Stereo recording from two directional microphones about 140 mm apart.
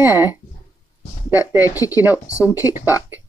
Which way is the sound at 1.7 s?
25° left (ahead or behind).